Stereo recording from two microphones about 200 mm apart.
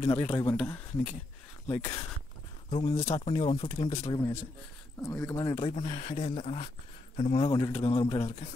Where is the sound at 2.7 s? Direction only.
30° left (ahead or behind).